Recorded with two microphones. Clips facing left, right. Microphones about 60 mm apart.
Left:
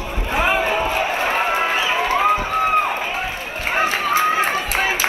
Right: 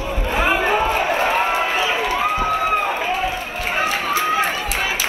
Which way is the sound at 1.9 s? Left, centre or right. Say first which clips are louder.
Left 2 dB; left.